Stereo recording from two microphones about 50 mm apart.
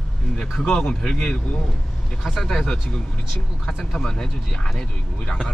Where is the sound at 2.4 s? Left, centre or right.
Centre.